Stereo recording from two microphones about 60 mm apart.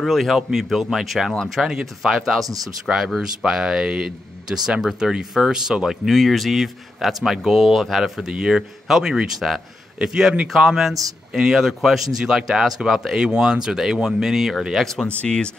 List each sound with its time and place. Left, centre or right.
0.0 s speech: centre
15.2 s speech: centre